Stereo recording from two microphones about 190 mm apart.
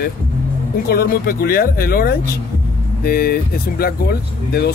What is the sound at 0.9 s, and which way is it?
Speech, 50° left (ahead or behind).